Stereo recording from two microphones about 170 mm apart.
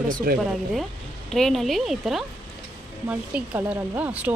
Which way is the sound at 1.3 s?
Centre (ahead or behind).